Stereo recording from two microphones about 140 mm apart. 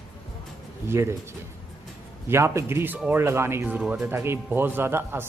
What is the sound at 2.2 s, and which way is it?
Speech, 20° right (ahead or behind).